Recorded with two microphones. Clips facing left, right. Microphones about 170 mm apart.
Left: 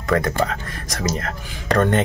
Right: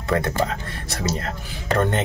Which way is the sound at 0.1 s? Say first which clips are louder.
Left 2 dB; 30° right (ahead or behind).